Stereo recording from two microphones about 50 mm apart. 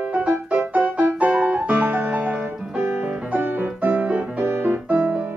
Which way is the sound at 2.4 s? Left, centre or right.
Centre.